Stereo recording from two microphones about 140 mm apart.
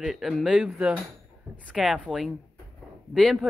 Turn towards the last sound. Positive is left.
turn(degrees=5)  # may be behind; listen again after turning